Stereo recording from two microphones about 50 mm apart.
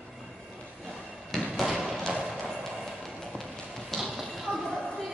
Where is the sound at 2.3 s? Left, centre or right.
Centre.